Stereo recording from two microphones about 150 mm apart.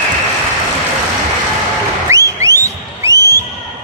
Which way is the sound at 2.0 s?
20° right (ahead or behind).